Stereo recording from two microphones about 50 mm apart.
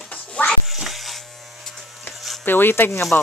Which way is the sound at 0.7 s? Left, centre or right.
Centre.